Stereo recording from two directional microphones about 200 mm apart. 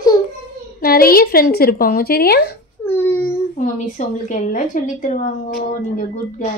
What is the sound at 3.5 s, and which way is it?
A woman's voice, 40° left (ahead or behind).